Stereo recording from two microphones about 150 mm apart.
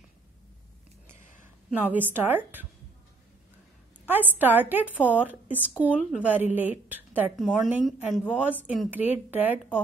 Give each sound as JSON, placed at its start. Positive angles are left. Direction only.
{"t": 1.7, "sound": "a woman's voice", "side_deg": -10}
{"t": 4.1, "sound": "a woman's voice", "side_deg": -10}
{"t": 7.3, "sound": "a woman's voice", "side_deg": 0}